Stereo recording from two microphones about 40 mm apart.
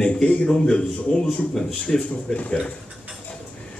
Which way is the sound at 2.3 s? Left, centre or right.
Left.